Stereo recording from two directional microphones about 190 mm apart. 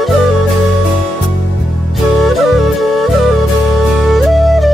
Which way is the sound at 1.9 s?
Centre (ahead or behind).